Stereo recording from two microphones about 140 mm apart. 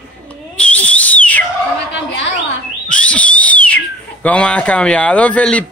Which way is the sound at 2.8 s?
10° left (ahead or behind).